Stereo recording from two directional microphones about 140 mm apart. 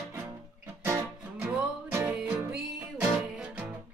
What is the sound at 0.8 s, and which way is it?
Music, 20° right (ahead or behind).